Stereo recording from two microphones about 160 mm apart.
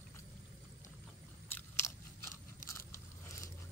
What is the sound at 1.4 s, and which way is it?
Biting, 15° left (ahead or behind).